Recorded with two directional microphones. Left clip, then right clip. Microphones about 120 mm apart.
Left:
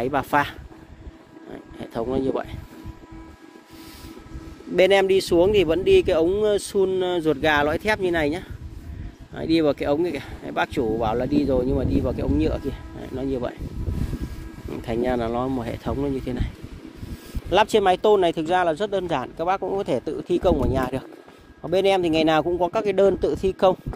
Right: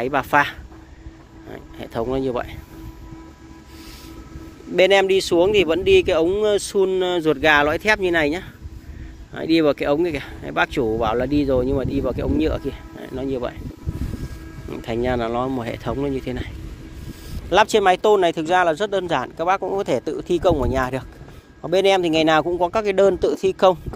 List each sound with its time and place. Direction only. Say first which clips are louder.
0.0 s a man's voice: right 4 dB; 20° left (ahead or behind)
1.5 s a sound: right 3 dB; 15° left (ahead or behind)
4.7 s speech: right 2 dB; 30° left (ahead or behind); by 12.7 s 5° left (ahead or behind)
13.0 s speech: right 2 dB; 20° left (ahead or behind)
14.7 s speech: right 2 dB; 15° left (ahead or behind)
17.5 s a man's voice: right 3 dB; 20° left (ahead or behind)
23.2 s speech: right 3 dB; 5° left (ahead or behind)